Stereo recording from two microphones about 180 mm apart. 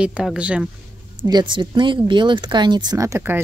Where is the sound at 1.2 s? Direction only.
25° right (ahead or behind).